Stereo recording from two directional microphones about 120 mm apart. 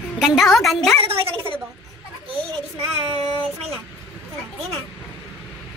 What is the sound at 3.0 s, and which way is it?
Child singing, 55° right (ahead or behind).